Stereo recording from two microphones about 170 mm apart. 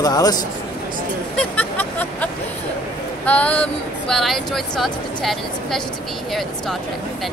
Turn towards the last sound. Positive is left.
turn(degrees=0)  # may be behind; listen again after turning